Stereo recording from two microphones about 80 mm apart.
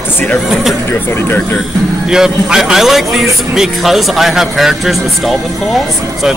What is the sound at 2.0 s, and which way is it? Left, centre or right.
A man's voice, centre.